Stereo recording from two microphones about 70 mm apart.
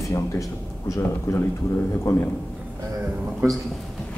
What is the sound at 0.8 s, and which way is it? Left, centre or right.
Speech, left.